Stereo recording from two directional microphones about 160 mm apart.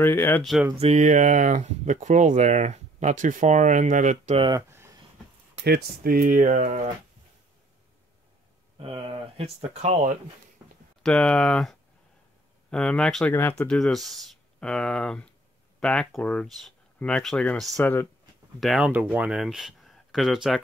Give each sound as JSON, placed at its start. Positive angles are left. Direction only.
{"t": 0.0, "sound": "speech", "side_deg": 15}
{"t": 0.4, "sound": "speech", "side_deg": 0}
{"t": 0.7, "sound": "speech", "side_deg": -45}
{"t": 4.4, "sound": "speech", "side_deg": -25}
{"t": 5.6, "sound": "speech", "side_deg": -75}
{"t": 8.7, "sound": "speech", "side_deg": -35}
{"t": 11.0, "sound": "speech", "side_deg": 5}
{"t": 12.7, "sound": "speech", "side_deg": 5}